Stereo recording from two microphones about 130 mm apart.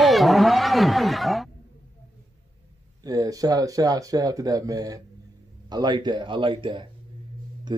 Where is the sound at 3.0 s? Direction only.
30° right (ahead or behind).